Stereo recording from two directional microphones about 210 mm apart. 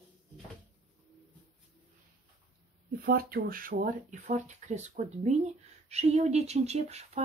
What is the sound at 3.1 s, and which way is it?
Speech, 45° right (ahead or behind).